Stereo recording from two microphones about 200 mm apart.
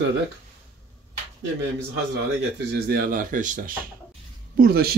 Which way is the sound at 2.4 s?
50° right (ahead or behind).